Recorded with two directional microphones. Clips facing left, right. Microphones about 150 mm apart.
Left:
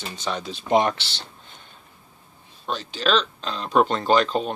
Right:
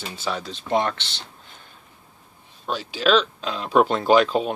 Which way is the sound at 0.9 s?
5° left (ahead or behind).